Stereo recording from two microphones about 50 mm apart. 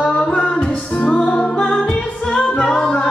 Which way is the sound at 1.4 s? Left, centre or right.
Centre.